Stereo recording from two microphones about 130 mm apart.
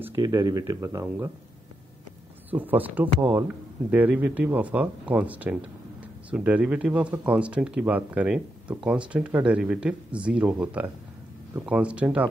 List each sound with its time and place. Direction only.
0.1 s speech: 25° right (ahead or behind)
2.5 s speech: 15° right (ahead or behind)